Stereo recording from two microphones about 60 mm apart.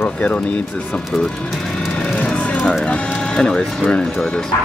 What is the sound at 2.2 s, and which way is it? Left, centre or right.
Music, left.